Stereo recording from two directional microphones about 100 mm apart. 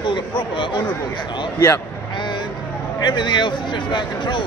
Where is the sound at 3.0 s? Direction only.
50° left (ahead or behind).